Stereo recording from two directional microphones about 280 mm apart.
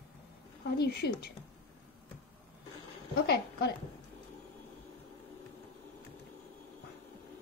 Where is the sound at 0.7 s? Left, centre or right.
Left.